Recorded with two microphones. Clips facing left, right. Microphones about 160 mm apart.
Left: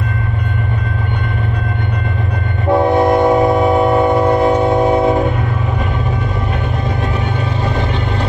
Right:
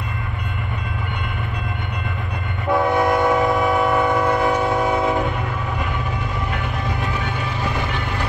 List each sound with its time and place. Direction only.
2.7 s train: 20° left (ahead or behind)